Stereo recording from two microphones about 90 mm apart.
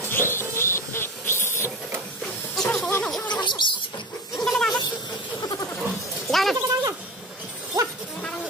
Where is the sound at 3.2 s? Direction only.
55° left (ahead or behind).